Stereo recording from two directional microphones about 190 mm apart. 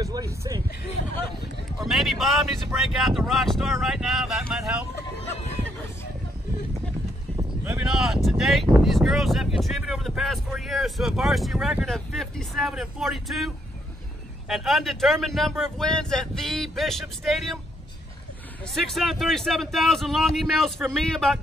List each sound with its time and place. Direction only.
0.0 s a sound: 20° right (ahead or behind)
1.8 s a sound: centre (ahead or behind)
2.8 s speech: centre (ahead or behind)
7.6 s speech: 5° right (ahead or behind)
14.5 s speech: centre (ahead or behind)
18.8 s speech: centre (ahead or behind)